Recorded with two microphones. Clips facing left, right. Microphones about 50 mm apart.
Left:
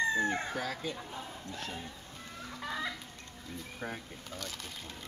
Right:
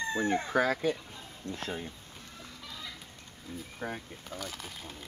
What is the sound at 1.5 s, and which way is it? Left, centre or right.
Speech, right.